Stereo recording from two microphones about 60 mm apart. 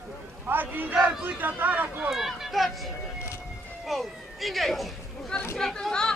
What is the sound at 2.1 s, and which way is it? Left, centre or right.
Speech, centre.